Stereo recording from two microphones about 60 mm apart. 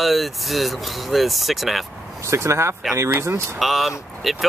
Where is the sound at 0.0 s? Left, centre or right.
Centre.